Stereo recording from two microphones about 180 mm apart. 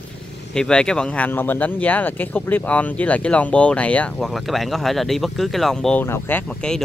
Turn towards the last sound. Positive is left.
turn(degrees=5)  # may be behind; listen again after turning